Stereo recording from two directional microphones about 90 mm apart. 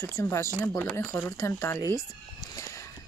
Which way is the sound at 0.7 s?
25° left (ahead or behind).